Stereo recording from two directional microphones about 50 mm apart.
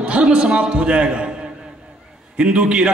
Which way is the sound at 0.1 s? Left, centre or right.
Right.